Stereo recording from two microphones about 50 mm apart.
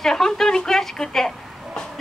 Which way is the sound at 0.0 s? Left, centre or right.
Centre.